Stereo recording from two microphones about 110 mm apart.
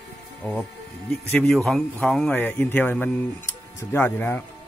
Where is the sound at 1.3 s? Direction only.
5° left (ahead or behind).